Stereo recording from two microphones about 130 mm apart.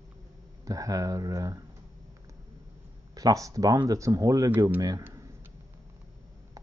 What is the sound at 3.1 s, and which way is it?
Speech, 25° right (ahead or behind).